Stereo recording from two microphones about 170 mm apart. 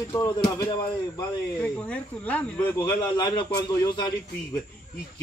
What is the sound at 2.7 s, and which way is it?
A man's voice, 25° left (ahead or behind).